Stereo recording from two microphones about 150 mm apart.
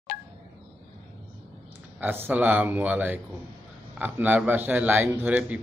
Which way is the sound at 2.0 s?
15° right (ahead or behind).